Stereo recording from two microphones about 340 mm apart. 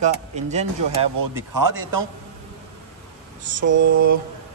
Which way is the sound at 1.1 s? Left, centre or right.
Right.